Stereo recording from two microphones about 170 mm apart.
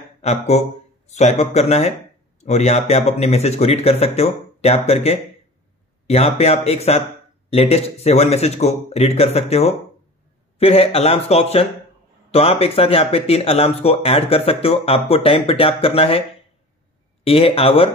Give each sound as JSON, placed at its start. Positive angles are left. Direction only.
{"t": 0.2, "sound": "speech", "side_deg": 40}
{"t": 17.2, "sound": "speech", "side_deg": 35}